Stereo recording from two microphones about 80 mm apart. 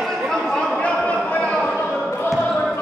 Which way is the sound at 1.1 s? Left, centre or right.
Centre.